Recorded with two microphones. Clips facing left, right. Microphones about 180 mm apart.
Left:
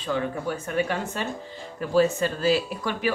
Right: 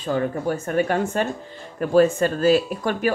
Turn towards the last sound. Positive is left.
turn(degrees=-50)  # may be behind; listen again after turning